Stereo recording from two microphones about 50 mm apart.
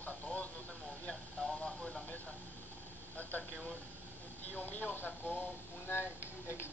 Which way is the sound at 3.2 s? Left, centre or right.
Left.